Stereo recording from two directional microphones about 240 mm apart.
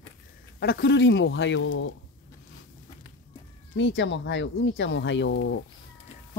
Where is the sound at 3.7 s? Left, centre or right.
Left.